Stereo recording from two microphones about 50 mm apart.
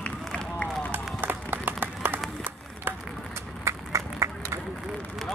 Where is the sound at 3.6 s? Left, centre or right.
Right.